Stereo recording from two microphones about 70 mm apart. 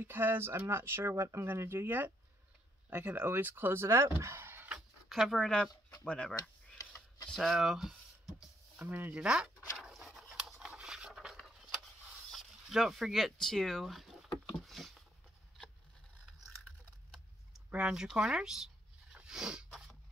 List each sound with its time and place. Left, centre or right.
0.0 s speech: right
1.1 s speech: right
1.5 s speech: right
4.2 s a sound: right
4.7 s a sound: centre
6.0 s speech: centre
7.3 s speech: centre
8.7 s speech: right
9.2 s speech: centre
9.8 s zipper: centre
10.6 s a sound: centre
17.7 s speech: centre
19.1 s a sound: centre